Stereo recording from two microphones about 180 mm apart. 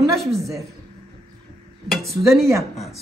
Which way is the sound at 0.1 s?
Centre (ahead or behind).